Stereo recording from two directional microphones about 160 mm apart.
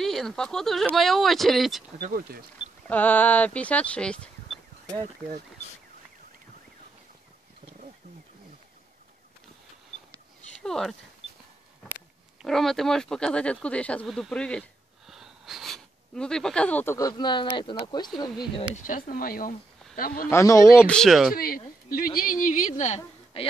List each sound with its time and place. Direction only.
0.0 s speech: centre (ahead or behind)
2.0 s speech: 65° right (ahead or behind)
2.9 s speech: 10° left (ahead or behind)
10.6 s speech: 5° left (ahead or behind)
12.4 s speech: centre (ahead or behind); by 18.6 s 30° left (ahead or behind)
18.9 s speech: 60° left (ahead or behind)
20.2 s speech: 20° left (ahead or behind)
20.8 s speech: 5° left (ahead or behind)
21.4 s a woman's voice: 65° left (ahead or behind); by 23.4 s 45° left (ahead or behind)